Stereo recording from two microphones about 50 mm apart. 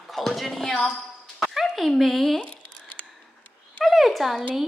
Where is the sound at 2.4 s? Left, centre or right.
Left.